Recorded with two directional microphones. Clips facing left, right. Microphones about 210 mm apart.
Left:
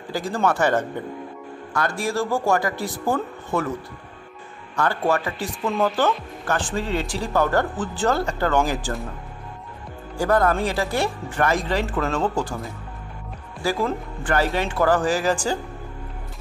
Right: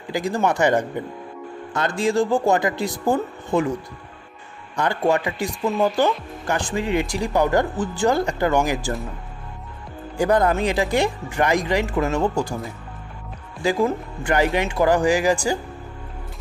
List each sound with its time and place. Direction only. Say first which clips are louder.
0.1 s speech: right 1 dB; 15° right (ahead or behind)
4.7 s speech: right 2 dB; 15° right (ahead or behind)
10.1 s speech: right 1 dB; 15° right (ahead or behind)
13.6 s speech: right 3 dB; 15° right (ahead or behind)